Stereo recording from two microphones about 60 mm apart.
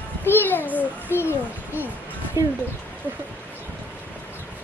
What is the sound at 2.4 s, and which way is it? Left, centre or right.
Speech, right.